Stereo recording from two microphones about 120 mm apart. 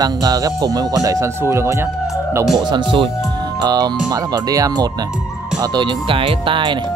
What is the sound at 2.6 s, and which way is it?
Speech, 40° right (ahead or behind).